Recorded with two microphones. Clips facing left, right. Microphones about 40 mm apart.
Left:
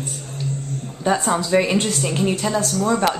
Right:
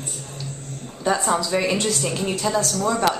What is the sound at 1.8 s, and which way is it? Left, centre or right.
Speech, left.